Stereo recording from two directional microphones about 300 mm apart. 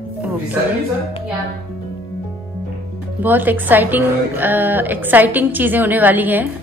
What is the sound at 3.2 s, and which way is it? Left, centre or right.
A woman's voice, centre.